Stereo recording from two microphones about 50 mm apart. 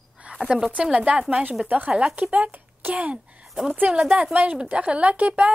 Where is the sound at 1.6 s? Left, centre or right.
Right.